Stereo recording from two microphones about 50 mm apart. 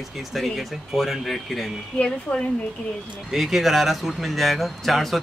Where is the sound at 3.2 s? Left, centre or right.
Centre.